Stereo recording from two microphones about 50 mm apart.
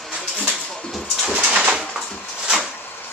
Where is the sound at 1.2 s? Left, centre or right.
Centre.